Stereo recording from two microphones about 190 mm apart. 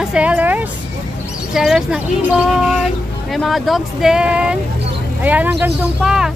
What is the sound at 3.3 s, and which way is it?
Speech, centre (ahead or behind).